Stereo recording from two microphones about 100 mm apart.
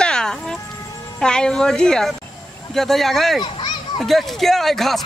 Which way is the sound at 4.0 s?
Centre (ahead or behind).